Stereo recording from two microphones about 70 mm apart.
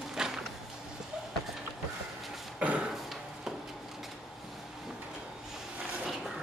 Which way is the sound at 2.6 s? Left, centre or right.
Centre.